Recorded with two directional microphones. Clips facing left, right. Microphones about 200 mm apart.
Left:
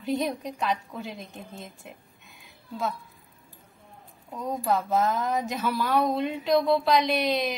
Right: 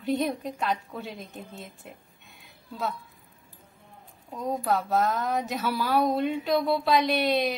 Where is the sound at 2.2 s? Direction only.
Centre (ahead or behind).